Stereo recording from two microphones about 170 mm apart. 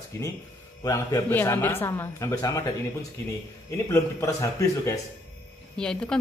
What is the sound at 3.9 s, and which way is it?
A man's voice, 20° left (ahead or behind).